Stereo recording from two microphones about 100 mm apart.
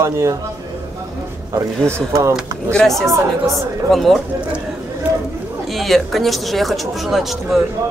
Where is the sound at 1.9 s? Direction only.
30° right (ahead or behind).